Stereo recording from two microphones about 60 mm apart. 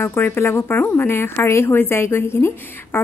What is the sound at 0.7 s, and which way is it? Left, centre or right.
A woman's voice, left.